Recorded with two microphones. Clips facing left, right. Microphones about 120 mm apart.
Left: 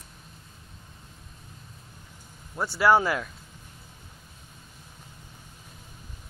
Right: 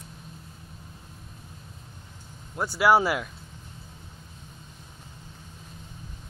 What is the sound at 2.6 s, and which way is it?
Speech, 5° right (ahead or behind).